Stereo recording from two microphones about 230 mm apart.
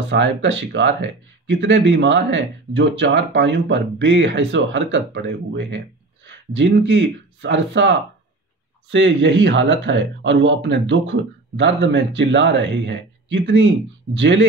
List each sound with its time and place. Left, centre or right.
0.1 s speech: right